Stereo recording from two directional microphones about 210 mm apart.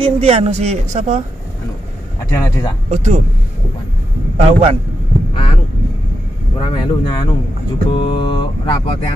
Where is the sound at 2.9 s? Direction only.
35° right (ahead or behind).